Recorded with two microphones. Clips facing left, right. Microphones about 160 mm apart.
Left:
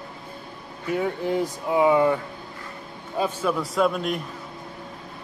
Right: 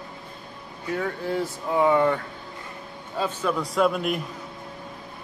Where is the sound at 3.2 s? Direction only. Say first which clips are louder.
Left 2 dB; 10° left (ahead or behind).